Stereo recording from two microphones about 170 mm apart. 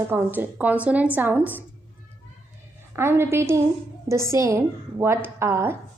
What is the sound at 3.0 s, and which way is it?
A woman's voice, 15° right (ahead or behind).